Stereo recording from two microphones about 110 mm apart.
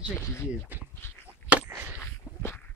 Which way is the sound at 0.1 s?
25° left (ahead or behind).